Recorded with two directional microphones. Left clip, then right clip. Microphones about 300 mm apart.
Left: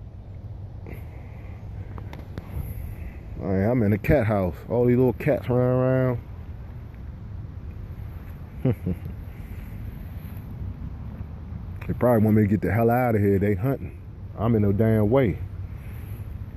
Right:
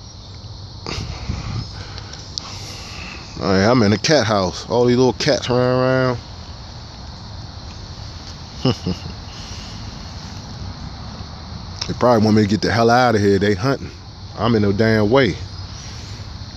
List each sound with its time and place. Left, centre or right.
3.4 s speech: centre
8.6 s speech: centre
11.8 s speech: centre